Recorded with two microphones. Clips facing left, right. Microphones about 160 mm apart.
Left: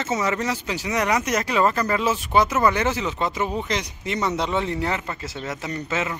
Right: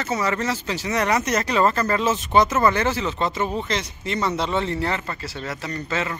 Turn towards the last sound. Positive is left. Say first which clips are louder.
# even
turn(degrees=15)  # may be behind; listen again after turning